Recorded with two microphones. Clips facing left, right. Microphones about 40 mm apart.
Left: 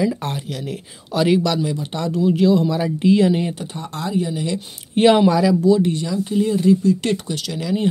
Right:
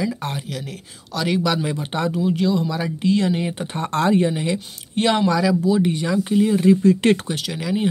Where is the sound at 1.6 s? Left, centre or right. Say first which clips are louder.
Even; right.